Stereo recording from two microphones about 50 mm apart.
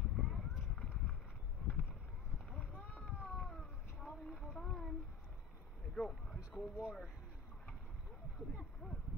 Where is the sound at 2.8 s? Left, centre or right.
Left.